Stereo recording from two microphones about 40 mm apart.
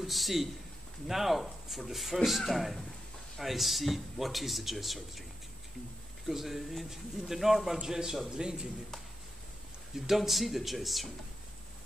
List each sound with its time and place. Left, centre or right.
0.0 s a man's voice: centre
6.2 s a man's voice: centre
9.9 s a man's voice: centre